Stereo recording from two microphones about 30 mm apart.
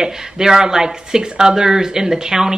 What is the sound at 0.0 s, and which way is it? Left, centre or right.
Speech, right.